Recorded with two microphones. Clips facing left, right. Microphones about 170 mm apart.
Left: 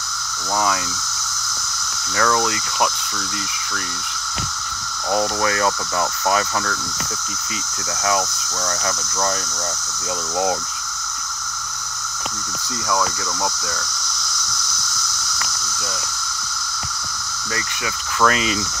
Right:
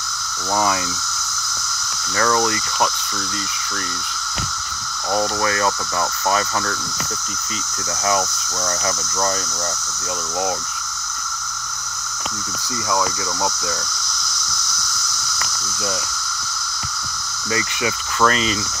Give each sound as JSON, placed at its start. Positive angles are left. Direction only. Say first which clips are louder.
{"t": 5.4, "sound": "speech", "louder": "even", "side_deg": 20}
{"t": 8.6, "sound": "speech", "louder": "right 1 dB", "side_deg": -5}
{"t": 18.2, "sound": "speech", "louder": "even", "side_deg": 10}